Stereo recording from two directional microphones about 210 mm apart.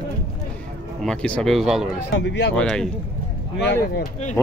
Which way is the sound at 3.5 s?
55° left (ahead or behind).